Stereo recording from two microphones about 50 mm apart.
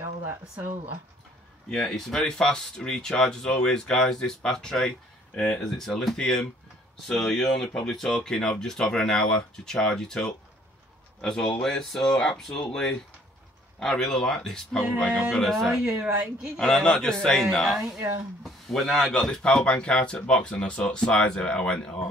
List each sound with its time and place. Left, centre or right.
0.0 s speech: right
1.7 s speech: centre
5.6 s speech: centre
15.0 s speech: centre
15.4 s speech: centre
16.5 s speech: centre